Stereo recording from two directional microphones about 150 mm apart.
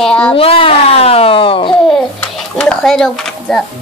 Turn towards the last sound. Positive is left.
turn(degrees=5)  # may be behind; listen again after turning